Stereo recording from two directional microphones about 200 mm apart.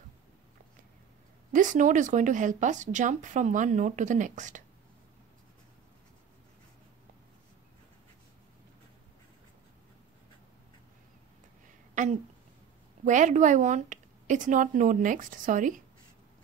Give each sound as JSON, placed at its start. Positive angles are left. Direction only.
{"t": 1.5, "sound": "speech", "side_deg": -40}
{"t": 11.9, "sound": "a sound", "side_deg": -40}
{"t": 13.0, "sound": "speech", "side_deg": -40}